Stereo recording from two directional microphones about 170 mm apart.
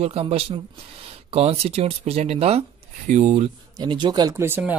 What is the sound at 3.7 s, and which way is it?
Speech, 25° right (ahead or behind).